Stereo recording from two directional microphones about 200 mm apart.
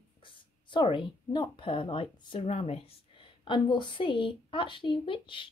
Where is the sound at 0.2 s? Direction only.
25° left (ahead or behind).